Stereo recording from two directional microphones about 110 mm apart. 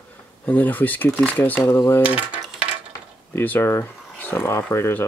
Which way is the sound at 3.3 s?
20° left (ahead or behind).